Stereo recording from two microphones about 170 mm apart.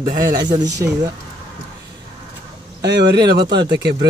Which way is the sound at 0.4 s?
25° right (ahead or behind).